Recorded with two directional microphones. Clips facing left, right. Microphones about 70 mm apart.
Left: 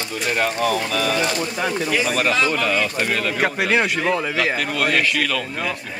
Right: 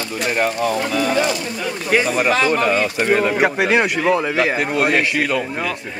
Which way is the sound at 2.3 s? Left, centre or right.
Right.